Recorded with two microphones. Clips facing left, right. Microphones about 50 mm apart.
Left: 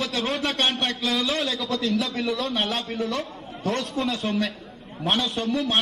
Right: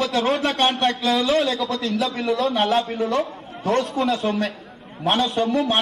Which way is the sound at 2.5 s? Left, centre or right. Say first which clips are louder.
Right 6 dB; right.